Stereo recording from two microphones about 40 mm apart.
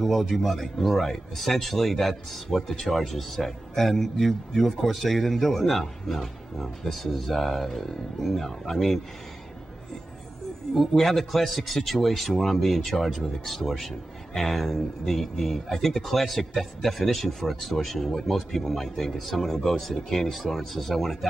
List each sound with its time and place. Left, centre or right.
0.0 s speech: centre
10.7 s speech: centre